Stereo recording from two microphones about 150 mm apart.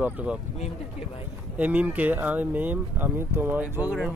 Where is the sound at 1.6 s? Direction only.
10° right (ahead or behind).